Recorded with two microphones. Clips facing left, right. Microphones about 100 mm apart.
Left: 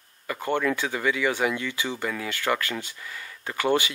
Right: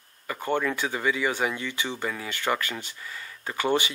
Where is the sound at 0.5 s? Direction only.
15° right (ahead or behind).